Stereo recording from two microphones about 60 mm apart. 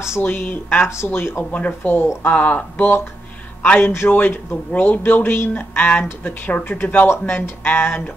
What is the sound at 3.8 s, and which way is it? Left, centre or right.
Speech, left.